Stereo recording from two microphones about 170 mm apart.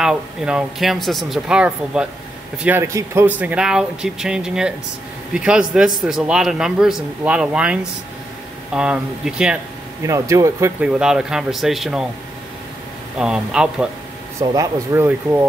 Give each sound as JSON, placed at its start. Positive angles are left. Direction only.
{"t": 0.0, "sound": "speech", "side_deg": -5}
{"t": 10.0, "sound": "speech", "side_deg": -20}
{"t": 10.8, "sound": "speech", "side_deg": -5}
{"t": 13.2, "sound": "speech", "side_deg": -5}
{"t": 14.4, "sound": "speech", "side_deg": -20}